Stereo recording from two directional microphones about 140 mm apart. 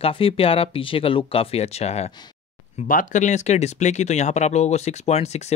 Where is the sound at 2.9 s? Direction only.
65° left (ahead or behind).